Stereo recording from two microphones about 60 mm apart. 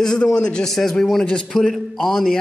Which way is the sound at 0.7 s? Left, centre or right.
Centre.